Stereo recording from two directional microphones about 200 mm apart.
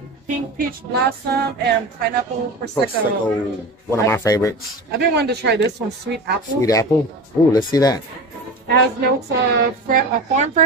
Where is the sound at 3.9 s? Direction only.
15° left (ahead or behind).